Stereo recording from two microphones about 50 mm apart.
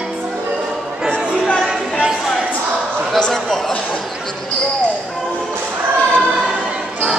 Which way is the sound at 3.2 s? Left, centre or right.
Centre.